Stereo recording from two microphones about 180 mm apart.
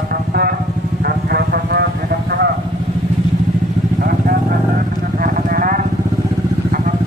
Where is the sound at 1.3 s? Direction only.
60° right (ahead or behind).